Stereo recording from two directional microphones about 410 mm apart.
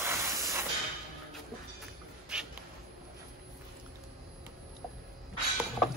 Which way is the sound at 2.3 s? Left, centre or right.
Centre.